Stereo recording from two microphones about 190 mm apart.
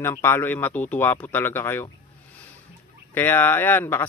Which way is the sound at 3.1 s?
10° left (ahead or behind).